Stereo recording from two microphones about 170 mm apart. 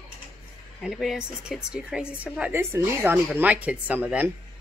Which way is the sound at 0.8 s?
5° right (ahead or behind).